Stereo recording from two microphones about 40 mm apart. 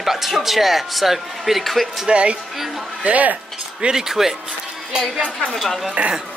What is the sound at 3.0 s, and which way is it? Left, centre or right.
Speech, right.